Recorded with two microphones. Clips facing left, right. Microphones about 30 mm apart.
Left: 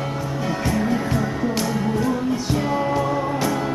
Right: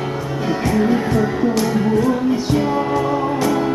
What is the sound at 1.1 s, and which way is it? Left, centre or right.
Music, centre.